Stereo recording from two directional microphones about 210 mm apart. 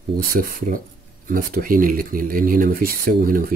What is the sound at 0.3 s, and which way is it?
Speech, 45° right (ahead or behind).